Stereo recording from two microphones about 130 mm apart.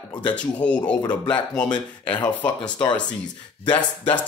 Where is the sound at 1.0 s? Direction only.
35° left (ahead or behind).